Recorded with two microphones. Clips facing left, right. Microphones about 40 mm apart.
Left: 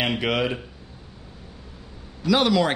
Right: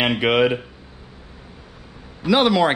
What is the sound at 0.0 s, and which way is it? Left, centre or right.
Speech, right.